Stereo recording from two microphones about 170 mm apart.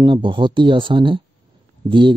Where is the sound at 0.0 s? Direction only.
30° right (ahead or behind).